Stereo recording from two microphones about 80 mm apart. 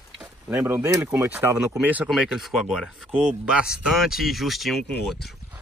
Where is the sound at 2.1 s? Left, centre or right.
Centre.